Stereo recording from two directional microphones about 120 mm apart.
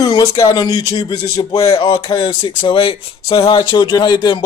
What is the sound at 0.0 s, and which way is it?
Speech, 30° left (ahead or behind).